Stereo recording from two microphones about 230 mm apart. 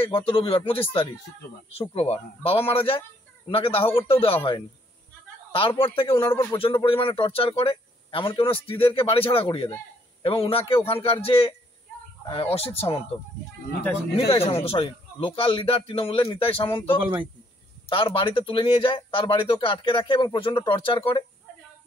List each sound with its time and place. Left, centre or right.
0.0 s speech: left
1.7 s speech: left
14.1 s speech: left
17.8 s speech: left